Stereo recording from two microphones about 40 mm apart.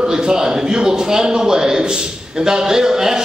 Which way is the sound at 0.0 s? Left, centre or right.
Centre.